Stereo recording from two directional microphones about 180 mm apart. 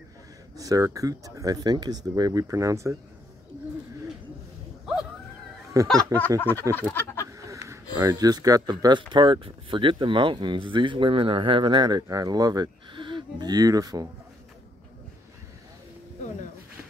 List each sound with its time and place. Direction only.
0.6 s speech: 20° right (ahead or behind)
5.7 s speech: 20° right (ahead or behind)
6.7 s speech: 10° left (ahead or behind)
7.2 s a sound: 15° right (ahead or behind)
8.0 s speech: 20° right (ahead or behind)